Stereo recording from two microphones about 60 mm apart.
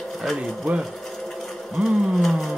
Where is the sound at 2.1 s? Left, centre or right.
Centre.